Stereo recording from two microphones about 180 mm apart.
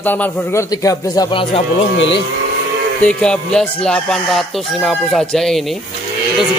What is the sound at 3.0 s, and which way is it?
Chicken, 5° left (ahead or behind).